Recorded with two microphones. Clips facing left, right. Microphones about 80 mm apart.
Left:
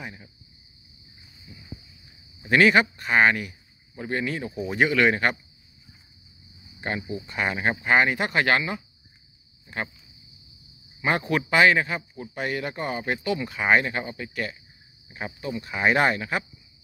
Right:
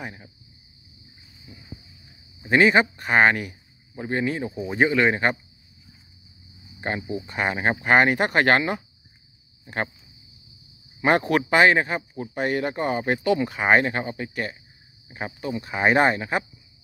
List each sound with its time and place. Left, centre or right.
0.0 s speech: right
2.5 s speech: right
3.9 s speech: right
6.8 s speech: right
7.8 s speech: right
11.0 s speech: right
11.5 s speech: right